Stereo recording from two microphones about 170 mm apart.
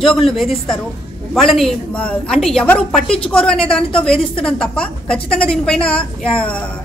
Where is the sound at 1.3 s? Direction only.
Centre (ahead or behind).